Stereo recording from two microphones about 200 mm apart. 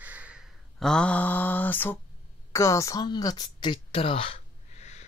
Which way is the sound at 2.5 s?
15° left (ahead or behind).